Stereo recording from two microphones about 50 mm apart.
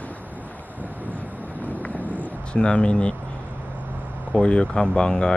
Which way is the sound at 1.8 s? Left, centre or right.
Left.